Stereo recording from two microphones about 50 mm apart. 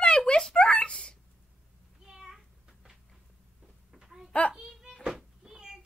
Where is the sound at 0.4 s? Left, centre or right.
Centre.